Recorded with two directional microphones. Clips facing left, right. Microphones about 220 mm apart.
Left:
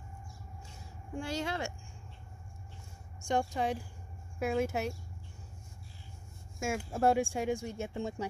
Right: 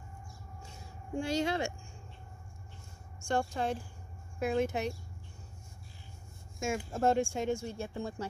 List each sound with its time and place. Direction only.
1.2 s speech: 20° right (ahead or behind)
3.3 s speech: 15° left (ahead or behind)
6.6 s speech: 10° left (ahead or behind)